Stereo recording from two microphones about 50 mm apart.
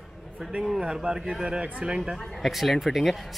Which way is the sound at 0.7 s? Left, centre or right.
Centre.